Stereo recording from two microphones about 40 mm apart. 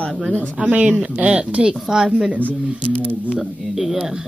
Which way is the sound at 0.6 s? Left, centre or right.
Right.